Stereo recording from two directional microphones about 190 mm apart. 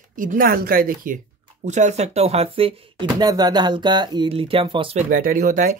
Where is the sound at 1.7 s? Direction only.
40° right (ahead or behind).